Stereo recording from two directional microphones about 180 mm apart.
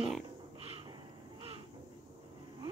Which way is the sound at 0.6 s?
30° right (ahead or behind).